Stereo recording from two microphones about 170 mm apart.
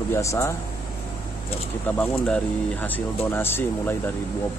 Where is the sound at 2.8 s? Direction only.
10° left (ahead or behind).